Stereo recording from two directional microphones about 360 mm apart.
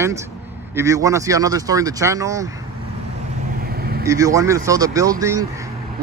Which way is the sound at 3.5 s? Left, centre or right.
Right.